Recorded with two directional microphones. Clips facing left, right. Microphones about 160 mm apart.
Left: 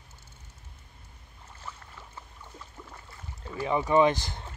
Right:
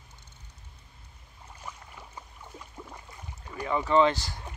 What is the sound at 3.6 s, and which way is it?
Speech, 15° left (ahead or behind).